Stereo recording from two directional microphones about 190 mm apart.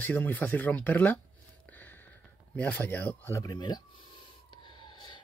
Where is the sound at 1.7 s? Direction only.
10° left (ahead or behind).